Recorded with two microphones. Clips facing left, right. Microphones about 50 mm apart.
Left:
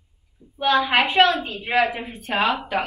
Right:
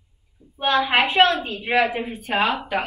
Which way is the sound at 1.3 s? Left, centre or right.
Centre.